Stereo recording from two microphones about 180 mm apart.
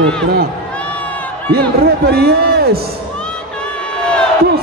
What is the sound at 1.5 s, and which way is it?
A man's voice, 60° right (ahead or behind).